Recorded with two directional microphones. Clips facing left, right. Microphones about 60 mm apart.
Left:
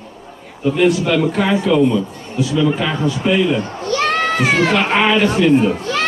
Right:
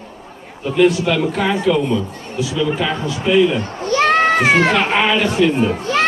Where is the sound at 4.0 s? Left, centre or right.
Right.